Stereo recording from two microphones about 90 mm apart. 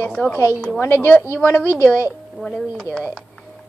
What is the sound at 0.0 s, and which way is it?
Speech, 10° left (ahead or behind).